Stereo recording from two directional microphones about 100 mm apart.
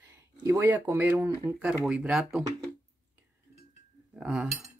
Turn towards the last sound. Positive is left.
turn(degrees=-5)  # may be behind; listen again after turning